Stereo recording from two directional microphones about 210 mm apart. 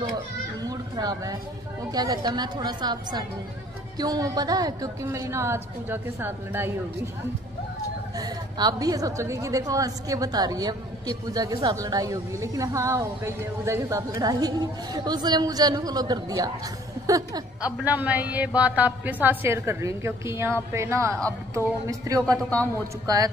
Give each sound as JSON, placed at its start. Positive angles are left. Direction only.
{"t": 0.6, "sound": "a sound", "side_deg": -20}
{"t": 1.9, "sound": "a woman's voice", "side_deg": -20}
{"t": 8.2, "sound": "a woman's voice", "side_deg": -15}